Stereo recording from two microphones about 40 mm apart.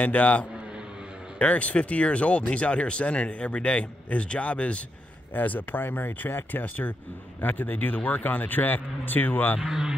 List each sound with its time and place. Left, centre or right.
0.0 s speech: left
5.3 s speech: left
9.6 s speech: centre